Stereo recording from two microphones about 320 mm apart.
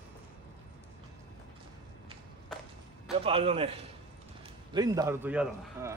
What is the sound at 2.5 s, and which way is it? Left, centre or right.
Whip, centre.